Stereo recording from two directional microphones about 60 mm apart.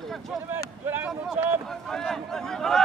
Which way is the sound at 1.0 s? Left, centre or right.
Centre.